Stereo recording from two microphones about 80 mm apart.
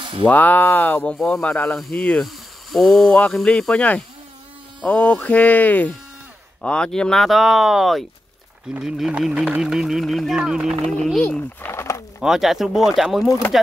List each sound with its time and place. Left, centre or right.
0.2 s speech: left
1.1 s speech: centre
2.2 s speech: centre
11.6 s a sound: left
12.2 s speech: centre